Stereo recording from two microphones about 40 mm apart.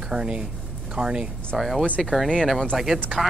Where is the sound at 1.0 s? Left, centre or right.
Right.